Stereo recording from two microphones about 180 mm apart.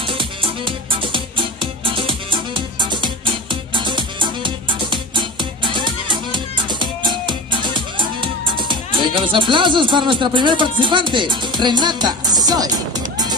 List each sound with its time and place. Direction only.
0.1 s music: 30° right (ahead or behind)